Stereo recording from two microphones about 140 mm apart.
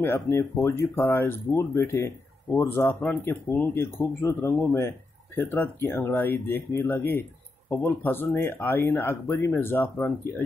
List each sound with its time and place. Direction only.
0.0 s speech: 20° left (ahead or behind)